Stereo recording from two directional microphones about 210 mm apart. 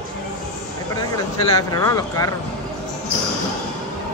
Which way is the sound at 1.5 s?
15° left (ahead or behind).